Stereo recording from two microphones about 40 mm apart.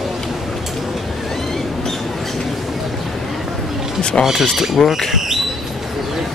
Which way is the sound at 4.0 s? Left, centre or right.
Left.